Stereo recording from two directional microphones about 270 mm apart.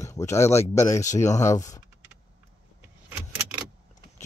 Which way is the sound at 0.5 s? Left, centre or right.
Left.